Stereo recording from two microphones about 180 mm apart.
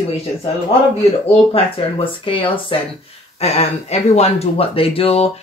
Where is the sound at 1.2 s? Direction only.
30° left (ahead or behind).